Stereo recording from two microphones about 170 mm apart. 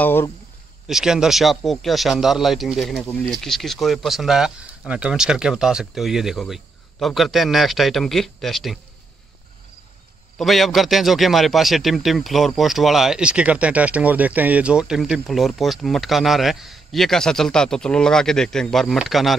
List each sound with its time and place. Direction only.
0.0 s speech: 15° left (ahead or behind)
0.8 s a man's voice: 5° right (ahead or behind)
10.3 s a man's voice: centre (ahead or behind)